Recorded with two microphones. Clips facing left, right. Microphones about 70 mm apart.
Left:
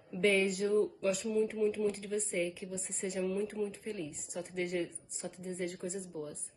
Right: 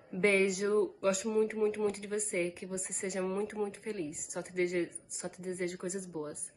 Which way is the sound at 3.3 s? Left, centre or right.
Right.